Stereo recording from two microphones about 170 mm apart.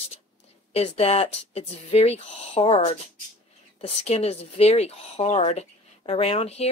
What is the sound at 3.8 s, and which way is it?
Speech, 35° left (ahead or behind).